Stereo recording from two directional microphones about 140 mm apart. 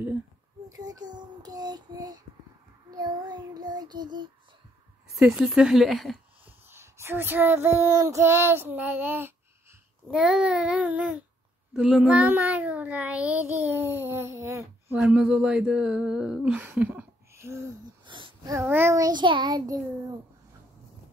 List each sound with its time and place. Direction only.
0.7 s child singing: 25° right (ahead or behind)
5.2 s speech: 5° right (ahead or behind)
6.4 s child singing: 15° right (ahead or behind)
15.0 s child singing: 5° right (ahead or behind)
18.0 s a child's voice: 35° right (ahead or behind)